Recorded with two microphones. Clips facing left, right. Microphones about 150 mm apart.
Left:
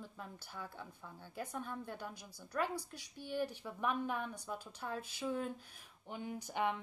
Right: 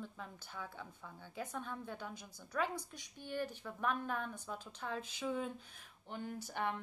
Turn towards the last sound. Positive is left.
turn(degrees=15)  # may be behind; listen again after turning